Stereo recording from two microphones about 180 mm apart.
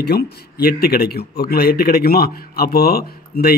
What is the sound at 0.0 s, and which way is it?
Speech, 60° left (ahead or behind).